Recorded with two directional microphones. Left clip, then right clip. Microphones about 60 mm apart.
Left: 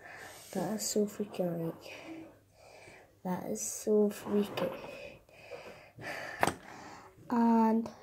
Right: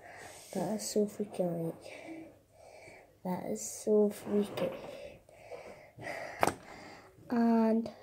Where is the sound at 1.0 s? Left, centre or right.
Left.